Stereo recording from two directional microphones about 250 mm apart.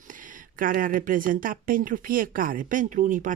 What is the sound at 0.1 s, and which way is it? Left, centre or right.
Speech, right.